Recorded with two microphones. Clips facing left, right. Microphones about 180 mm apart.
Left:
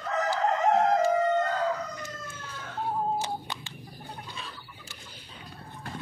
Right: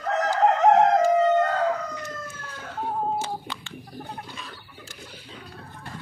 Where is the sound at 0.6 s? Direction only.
75° right (ahead or behind).